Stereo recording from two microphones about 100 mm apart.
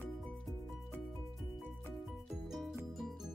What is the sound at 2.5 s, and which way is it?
Music, centre (ahead or behind).